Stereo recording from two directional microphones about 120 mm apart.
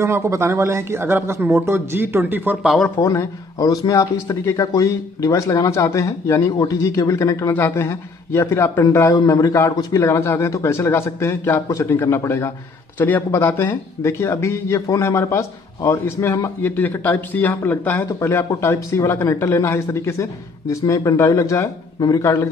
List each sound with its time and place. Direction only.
0.0 s speech: 25° right (ahead or behind)
2.6 s speech: centre (ahead or behind)
3.0 s a man's voice: 25° left (ahead or behind)